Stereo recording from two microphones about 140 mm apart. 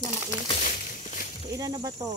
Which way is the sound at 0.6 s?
75° left (ahead or behind).